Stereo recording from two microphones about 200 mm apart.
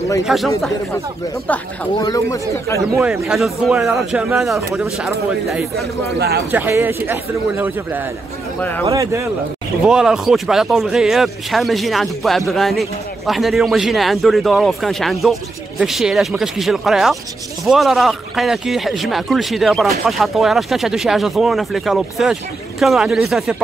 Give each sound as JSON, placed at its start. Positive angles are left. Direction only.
{"t": 0.3, "sound": "a man's voice", "side_deg": 0}
{"t": 2.0, "sound": "speech", "side_deg": 20}
{"t": 3.0, "sound": "a man's voice", "side_deg": -5}
{"t": 4.6, "sound": "speech", "side_deg": -15}
{"t": 4.8, "sound": "a man's voice", "side_deg": 0}
{"t": 6.1, "sound": "speech", "side_deg": -55}
{"t": 6.5, "sound": "speech", "side_deg": -10}
{"t": 8.5, "sound": "speech", "side_deg": 10}
{"t": 8.9, "sound": "speech", "side_deg": -15}
{"t": 9.8, "sound": "a man's voice", "side_deg": -5}